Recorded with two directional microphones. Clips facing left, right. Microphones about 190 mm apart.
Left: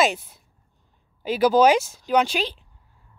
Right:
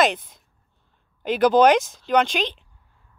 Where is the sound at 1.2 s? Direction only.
5° left (ahead or behind).